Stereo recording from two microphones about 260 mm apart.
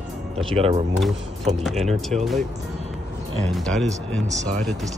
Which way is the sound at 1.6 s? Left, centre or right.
Centre.